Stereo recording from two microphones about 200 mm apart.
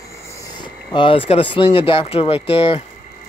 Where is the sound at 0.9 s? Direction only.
25° left (ahead or behind).